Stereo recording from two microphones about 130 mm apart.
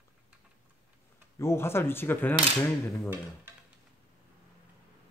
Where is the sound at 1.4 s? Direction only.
20° left (ahead or behind).